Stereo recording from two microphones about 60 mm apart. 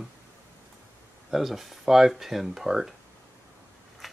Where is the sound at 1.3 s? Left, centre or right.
Centre.